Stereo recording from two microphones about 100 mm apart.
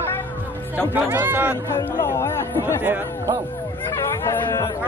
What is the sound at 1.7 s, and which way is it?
Chatter, 25° left (ahead or behind).